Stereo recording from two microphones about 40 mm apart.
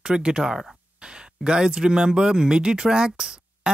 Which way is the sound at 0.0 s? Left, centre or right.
Centre.